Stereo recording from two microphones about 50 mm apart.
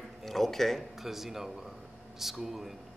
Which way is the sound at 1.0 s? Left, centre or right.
Centre.